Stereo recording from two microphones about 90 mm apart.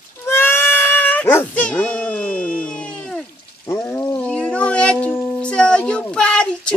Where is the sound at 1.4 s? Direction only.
15° left (ahead or behind).